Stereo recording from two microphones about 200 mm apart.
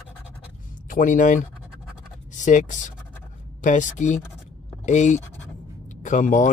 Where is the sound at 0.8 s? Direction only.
40° left (ahead or behind).